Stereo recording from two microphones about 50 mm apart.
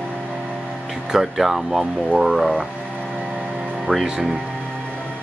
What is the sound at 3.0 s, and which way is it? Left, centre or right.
Music, centre.